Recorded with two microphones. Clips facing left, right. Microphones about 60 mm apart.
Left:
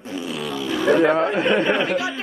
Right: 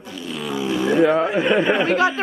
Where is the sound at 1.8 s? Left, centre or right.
Right.